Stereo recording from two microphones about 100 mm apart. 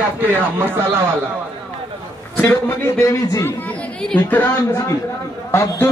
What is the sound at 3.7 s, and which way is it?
Speech, 10° left (ahead or behind).